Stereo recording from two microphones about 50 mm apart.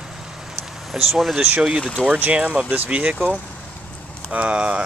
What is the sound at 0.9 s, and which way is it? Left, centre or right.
Speech, centre.